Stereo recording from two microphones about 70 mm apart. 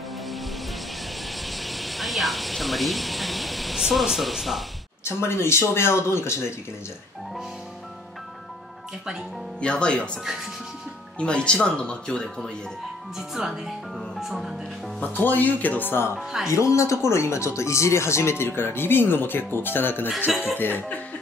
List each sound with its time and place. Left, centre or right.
1.3 s a sound: centre
5.0 s speech: left
9.6 s speech: centre
11.1 s speech: centre
13.3 s speech: centre
15.0 s speech: left
16.2 s speech: centre
16.4 s speech: left